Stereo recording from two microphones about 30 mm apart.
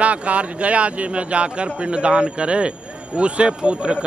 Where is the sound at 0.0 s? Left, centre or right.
Right.